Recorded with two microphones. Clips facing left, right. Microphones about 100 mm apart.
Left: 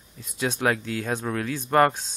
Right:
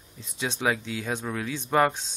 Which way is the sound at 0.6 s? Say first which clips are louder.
Left 1 dB; 10° right (ahead or behind).